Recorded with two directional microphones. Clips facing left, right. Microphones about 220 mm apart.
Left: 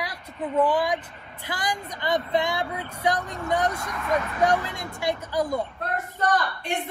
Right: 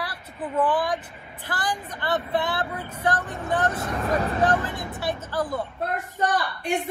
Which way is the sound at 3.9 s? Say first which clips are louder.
Right 2 dB; 35° right (ahead or behind).